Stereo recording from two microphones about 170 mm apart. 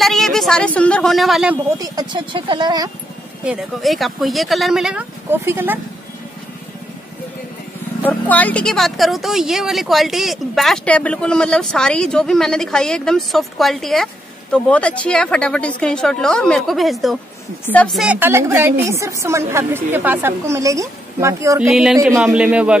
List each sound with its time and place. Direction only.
0.0 s speech: centre (ahead or behind)
1.8 s speech: 25° right (ahead or behind)
3.4 s speech: centre (ahead or behind)
5.4 s a woman's voice: 15° right (ahead or behind)
8.0 s speech: 10° left (ahead or behind)
18.0 s a woman's voice: 10° right (ahead or behind)
21.6 s speech: centre (ahead or behind)